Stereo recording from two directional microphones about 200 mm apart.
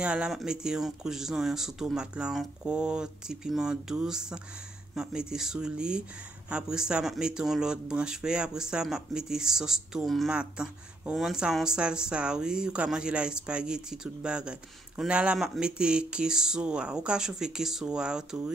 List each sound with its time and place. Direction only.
0.0 s speech: 5° right (ahead or behind)